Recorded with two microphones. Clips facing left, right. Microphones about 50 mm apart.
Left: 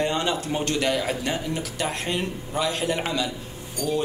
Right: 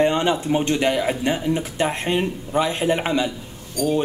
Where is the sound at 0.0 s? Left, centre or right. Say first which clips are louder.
Right 6 dB; right.